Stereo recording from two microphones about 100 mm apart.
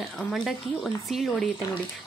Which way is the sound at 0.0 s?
Centre (ahead or behind).